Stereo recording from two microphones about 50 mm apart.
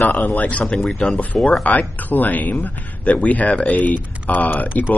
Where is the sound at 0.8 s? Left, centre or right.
Centre.